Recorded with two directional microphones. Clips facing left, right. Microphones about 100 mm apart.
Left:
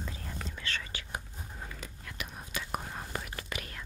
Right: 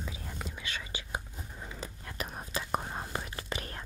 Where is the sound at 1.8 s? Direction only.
35° right (ahead or behind).